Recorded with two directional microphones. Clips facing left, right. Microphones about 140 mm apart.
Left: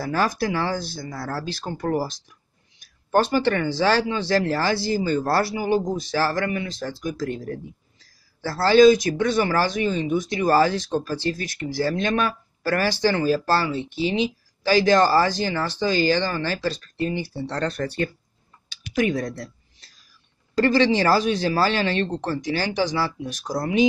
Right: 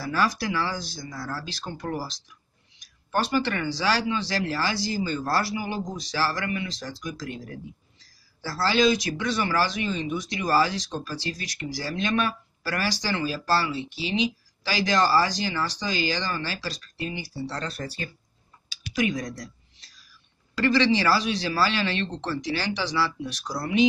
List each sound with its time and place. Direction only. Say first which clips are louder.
0.0 s speech: left 3 dB; 50° left (ahead or behind)
20.5 s speech: left 3 dB; 45° left (ahead or behind)